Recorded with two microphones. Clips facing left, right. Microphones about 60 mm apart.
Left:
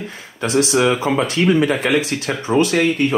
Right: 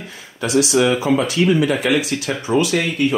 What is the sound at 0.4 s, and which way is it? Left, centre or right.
Speech, left.